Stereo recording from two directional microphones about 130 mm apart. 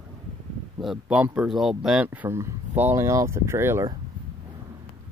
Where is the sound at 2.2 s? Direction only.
20° right (ahead or behind).